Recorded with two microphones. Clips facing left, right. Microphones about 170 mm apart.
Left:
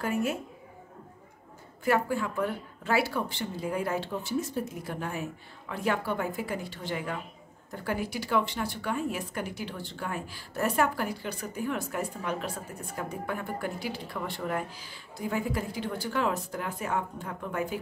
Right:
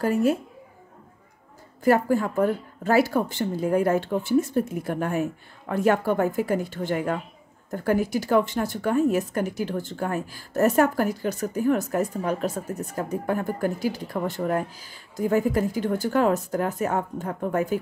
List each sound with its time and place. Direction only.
0.0 s a woman's voice: 35° right (ahead or behind)
1.9 s speech: 45° right (ahead or behind)